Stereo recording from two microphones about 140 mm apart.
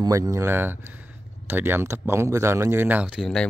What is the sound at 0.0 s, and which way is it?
Speech, 25° right (ahead or behind).